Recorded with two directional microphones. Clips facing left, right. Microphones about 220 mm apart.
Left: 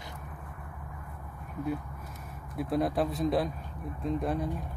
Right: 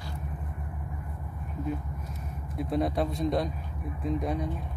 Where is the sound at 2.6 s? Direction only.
Centre (ahead or behind).